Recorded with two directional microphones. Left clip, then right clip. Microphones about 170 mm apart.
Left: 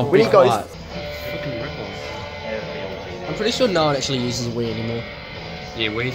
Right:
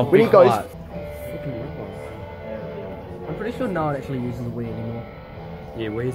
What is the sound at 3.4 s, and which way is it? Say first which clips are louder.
Speech: left 7 dB; 55° left (ahead or behind).